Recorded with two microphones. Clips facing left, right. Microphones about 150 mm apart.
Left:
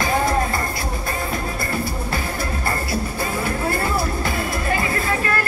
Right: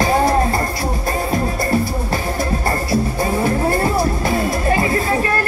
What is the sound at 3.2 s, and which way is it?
Music, 35° right (ahead or behind).